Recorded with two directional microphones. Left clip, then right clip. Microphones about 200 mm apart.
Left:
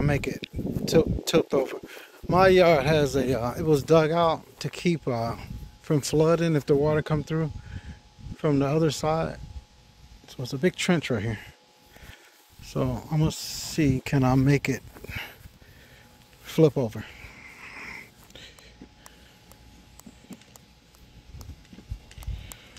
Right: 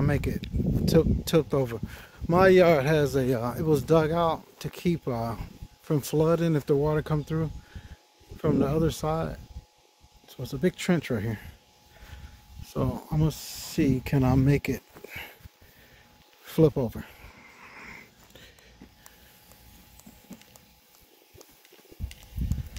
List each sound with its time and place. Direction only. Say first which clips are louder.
0.0 s speech: left 2 dB; 10° right (ahead or behind)
2.2 s speech: left 1 dB; 30° right (ahead or behind); by 11.5 s centre (ahead or behind)
12.6 s speech: left 2 dB; 5° right (ahead or behind)
16.4 s sniff: left 2 dB; 10° right (ahead or behind)